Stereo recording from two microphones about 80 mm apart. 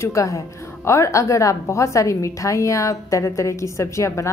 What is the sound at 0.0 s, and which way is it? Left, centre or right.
A woman's voice, left.